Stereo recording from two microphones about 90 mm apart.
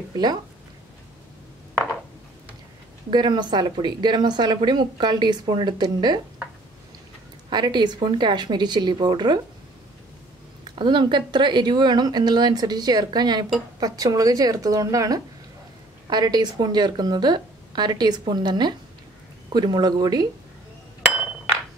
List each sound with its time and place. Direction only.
0.1 s speech: 50° right (ahead or behind)
3.1 s speech: 55° right (ahead or behind)
7.4 s speech: 55° right (ahead or behind)
10.6 s a woman's voice: 60° right (ahead or behind)